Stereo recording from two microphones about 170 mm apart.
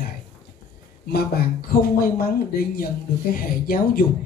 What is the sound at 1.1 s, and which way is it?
Speech, 65° left (ahead or behind).